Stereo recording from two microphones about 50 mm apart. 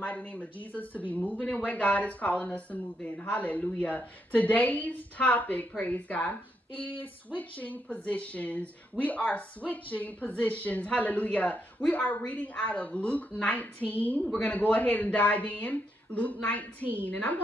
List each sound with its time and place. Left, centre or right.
0.0 s a woman's voice: left